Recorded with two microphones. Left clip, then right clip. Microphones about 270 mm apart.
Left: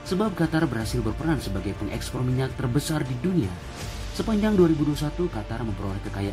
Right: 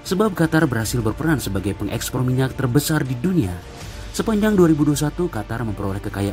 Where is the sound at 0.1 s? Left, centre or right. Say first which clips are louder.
Right 7 dB; right.